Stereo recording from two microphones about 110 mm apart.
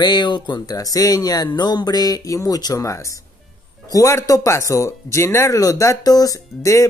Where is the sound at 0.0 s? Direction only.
45° left (ahead or behind).